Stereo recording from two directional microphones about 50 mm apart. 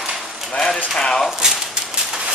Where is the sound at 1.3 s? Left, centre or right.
Centre.